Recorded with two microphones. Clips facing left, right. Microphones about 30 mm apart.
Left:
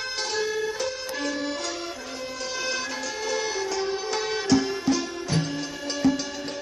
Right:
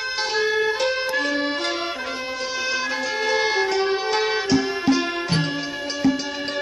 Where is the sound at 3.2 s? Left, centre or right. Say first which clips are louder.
Right 7 dB; right.